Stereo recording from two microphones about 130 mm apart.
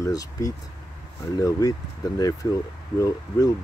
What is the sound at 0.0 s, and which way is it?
Speech, 25° left (ahead or behind).